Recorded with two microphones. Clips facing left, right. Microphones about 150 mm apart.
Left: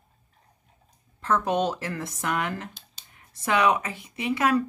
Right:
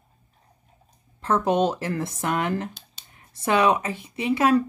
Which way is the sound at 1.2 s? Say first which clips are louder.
Right 3 dB; 25° right (ahead or behind).